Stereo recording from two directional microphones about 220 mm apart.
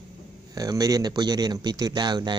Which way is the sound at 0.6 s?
15° right (ahead or behind).